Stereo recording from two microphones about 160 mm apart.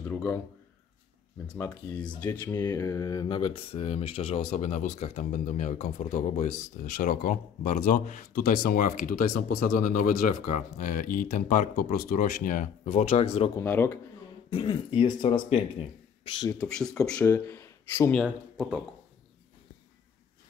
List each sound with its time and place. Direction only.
0.1 s a sound: 10° left (ahead or behind)
1.5 s speech: 10° left (ahead or behind); by 13.5 s 40° left (ahead or behind)
13.6 s speech: 15° left (ahead or behind)
14.5 s speech: 30° left (ahead or behind)
16.5 s speech: 5° left (ahead or behind)
18.2 s speech: 10° right (ahead or behind)